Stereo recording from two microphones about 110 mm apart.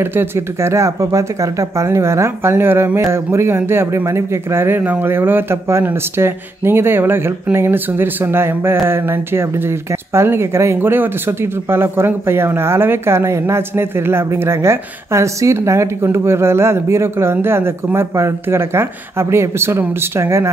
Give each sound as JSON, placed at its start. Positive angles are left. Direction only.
{"t": 0.0, "sound": "speech", "side_deg": -20}